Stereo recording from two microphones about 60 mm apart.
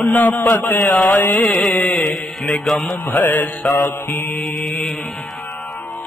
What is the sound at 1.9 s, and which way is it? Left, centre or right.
Music, centre.